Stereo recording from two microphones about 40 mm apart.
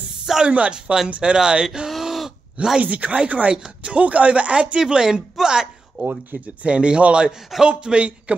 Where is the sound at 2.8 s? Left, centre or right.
Right; by 5.6 s centre.